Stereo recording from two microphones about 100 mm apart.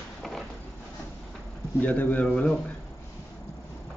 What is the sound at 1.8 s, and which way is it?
Speech, 15° left (ahead or behind).